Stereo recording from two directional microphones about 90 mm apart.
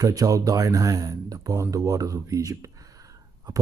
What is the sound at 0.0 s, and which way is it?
Speech, 40° right (ahead or behind).